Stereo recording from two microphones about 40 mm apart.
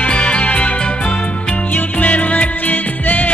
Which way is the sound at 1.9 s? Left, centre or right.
Left.